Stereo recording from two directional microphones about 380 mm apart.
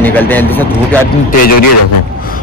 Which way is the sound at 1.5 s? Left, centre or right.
Left.